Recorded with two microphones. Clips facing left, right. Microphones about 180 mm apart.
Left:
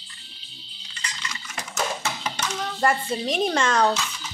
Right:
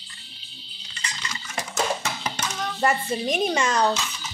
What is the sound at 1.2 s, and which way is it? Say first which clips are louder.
Dishes: right 4 dB; 30° right (ahead or behind).